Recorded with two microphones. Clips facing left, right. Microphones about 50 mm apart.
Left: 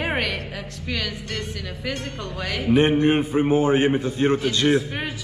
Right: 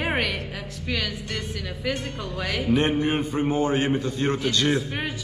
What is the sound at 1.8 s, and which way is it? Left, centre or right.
Speech, centre.